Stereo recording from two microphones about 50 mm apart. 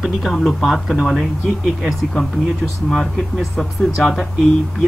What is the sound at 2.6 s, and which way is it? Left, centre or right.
Speech, centre.